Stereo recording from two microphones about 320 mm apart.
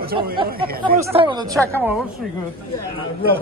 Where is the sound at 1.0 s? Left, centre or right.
Centre.